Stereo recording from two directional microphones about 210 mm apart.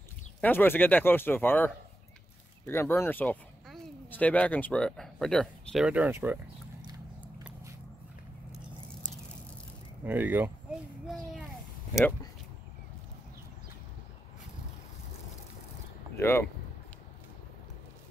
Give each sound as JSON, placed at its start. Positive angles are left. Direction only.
{"t": 0.4, "sound": "speech", "side_deg": 10}
{"t": 10.0, "sound": "a sound", "side_deg": -10}
{"t": 16.2, "sound": "speech", "side_deg": 10}